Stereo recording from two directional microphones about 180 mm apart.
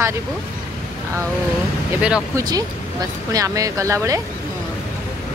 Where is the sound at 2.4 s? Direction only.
20° right (ahead or behind).